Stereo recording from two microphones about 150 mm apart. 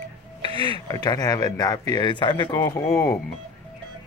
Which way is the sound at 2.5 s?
20° left (ahead or behind).